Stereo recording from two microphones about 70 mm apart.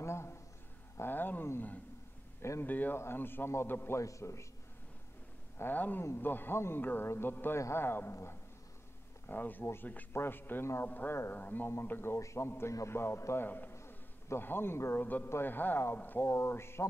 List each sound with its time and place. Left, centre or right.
0.0 s a sound: left
0.9 s a man's voice: left
4.0 s a man's voice: left
5.6 s a man's voice: left
13.5 s a man's voice: left